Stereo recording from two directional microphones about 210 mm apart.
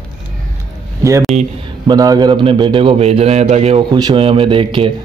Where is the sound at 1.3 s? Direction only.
30° right (ahead or behind).